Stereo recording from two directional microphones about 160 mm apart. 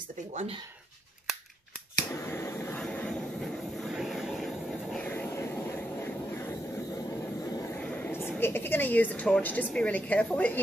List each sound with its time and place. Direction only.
0.3 s speech: 45° right (ahead or behind)
2.1 s a sound: 15° left (ahead or behind)
2.8 s vehicle: 5° left (ahead or behind)
5.0 s vehicle: 10° left (ahead or behind)
7.7 s vehicle: 10° left (ahead or behind)
8.4 s a woman's voice: 15° left (ahead or behind)